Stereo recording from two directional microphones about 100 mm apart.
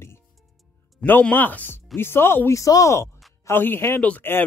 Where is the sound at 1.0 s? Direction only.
20° left (ahead or behind).